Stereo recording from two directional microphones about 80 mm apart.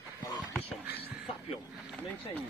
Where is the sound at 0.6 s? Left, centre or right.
Right.